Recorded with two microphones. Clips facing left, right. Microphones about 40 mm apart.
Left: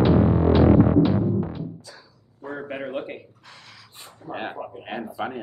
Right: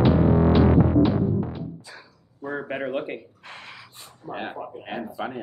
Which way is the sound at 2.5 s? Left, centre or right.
Centre.